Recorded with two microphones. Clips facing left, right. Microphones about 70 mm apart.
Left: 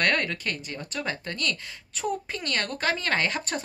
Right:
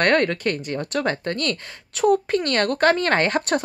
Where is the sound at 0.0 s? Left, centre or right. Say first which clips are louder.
Right 7 dB; right.